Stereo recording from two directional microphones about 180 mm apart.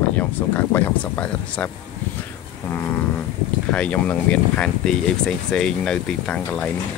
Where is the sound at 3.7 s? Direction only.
5° left (ahead or behind).